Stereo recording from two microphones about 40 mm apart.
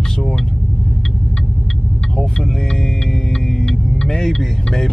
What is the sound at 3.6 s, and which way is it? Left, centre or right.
Speech, centre.